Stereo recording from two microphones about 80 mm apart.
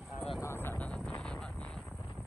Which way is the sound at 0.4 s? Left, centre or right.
Left.